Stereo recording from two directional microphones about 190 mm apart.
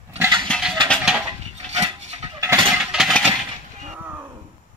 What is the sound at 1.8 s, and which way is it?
Goat, 35° right (ahead or behind).